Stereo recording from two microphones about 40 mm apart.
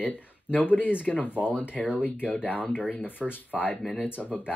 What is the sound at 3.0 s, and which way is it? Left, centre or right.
Speech, left.